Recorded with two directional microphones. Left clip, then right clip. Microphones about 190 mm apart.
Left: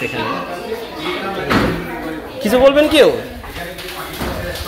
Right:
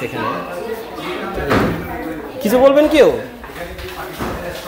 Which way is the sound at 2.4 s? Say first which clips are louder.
Even; 15° right (ahead or behind).